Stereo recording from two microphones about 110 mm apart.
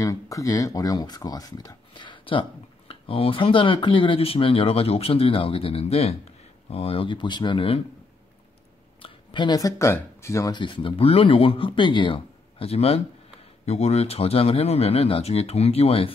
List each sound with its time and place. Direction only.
0.0 s speech: 30° left (ahead or behind); by 6.1 s 65° left (ahead or behind)
6.7 s speech: 55° left (ahead or behind)
9.0 s speech: 45° left (ahead or behind); by 10.5 s 25° left (ahead or behind)
10.5 s speech: 45° left (ahead or behind); by 13.0 s 65° left (ahead or behind)
13.7 s speech: 80° left; by 16.1 s 65° left (ahead or behind)